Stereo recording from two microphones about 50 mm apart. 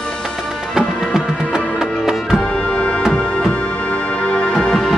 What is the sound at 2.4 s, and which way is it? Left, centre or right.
Music, centre.